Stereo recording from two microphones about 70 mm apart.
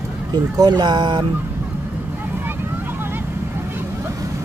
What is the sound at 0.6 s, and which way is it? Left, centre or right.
Speech, right.